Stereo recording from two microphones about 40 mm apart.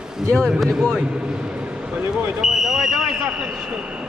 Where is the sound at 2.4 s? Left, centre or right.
Centre.